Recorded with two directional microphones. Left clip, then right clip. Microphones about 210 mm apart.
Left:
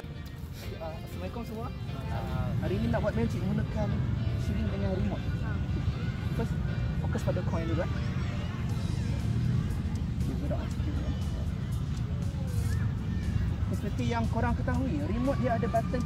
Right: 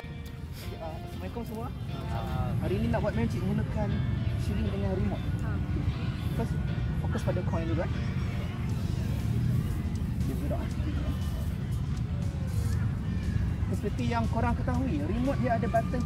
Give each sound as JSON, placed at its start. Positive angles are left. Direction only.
{"t": 2.9, "sound": "speech", "side_deg": 15}
{"t": 14.3, "sound": "speech", "side_deg": 15}